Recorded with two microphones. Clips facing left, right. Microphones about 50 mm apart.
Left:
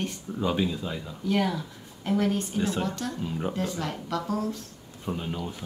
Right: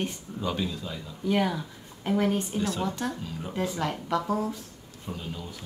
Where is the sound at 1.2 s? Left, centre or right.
Centre.